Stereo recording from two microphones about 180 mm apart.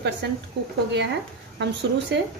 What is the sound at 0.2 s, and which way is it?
Speech, 70° right (ahead or behind).